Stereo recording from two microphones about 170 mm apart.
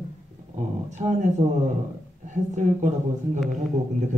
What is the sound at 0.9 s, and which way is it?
Speech, 45° right (ahead or behind).